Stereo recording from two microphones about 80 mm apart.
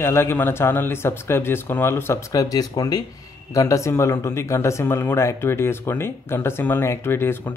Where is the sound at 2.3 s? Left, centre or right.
Left.